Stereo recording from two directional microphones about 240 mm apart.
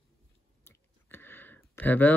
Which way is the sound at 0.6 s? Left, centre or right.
Centre.